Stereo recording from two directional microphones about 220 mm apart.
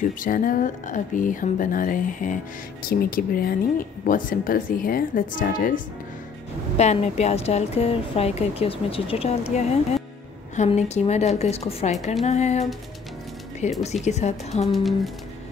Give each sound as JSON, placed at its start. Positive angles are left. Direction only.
{"t": 0.0, "sound": "a woman's voice", "side_deg": 40}
{"t": 6.8, "sound": "a woman's voice", "side_deg": 30}
{"t": 14.7, "sound": "speech", "side_deg": 0}